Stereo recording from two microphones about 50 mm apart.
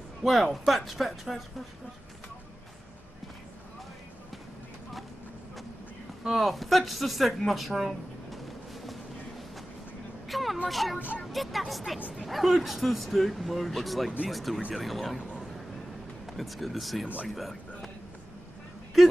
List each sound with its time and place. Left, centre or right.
0.2 s speech: centre
6.2 s speech: centre
10.2 s a sound: centre
10.7 s speech: centre
11.0 s speech: left
11.3 s speech: centre
16.3 s speech: centre
17.3 s music: centre